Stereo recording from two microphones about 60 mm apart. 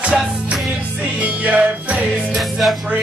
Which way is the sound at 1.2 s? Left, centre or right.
Right.